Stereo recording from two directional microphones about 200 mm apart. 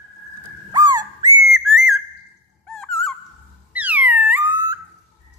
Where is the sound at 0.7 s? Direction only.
20° right (ahead or behind).